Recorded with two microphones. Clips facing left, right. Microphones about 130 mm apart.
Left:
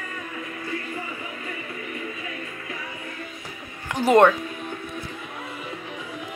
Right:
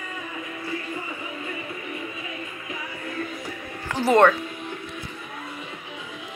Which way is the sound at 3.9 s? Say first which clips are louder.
Left 1 dB; 15° left (ahead or behind).